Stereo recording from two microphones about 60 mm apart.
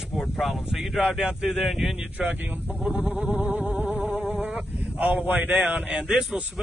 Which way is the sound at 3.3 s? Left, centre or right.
Right.